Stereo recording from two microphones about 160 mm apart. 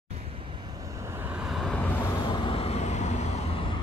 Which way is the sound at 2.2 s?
30° left (ahead or behind).